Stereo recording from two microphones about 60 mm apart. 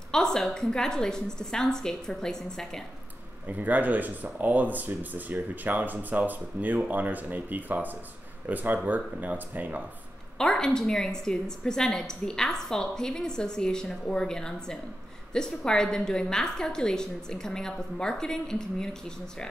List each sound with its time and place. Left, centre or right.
0.1 s a woman's voice: centre
3.4 s speech: right
10.3 s a woman's voice: centre